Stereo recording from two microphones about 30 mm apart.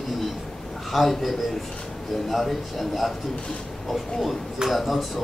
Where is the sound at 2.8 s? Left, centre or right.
Centre.